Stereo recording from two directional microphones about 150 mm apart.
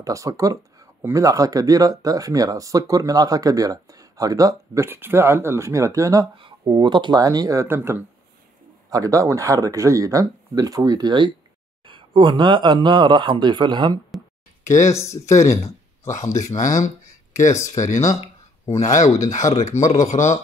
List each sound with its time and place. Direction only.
0.0 s speech: 20° right (ahead or behind)
6.3 s speech: 35° right (ahead or behind)
14.9 s speech: 20° left (ahead or behind)
15.3 s speech: 50° left (ahead or behind)
17.3 s a sound: 50° left (ahead or behind)
17.7 s speech: 55° left (ahead or behind)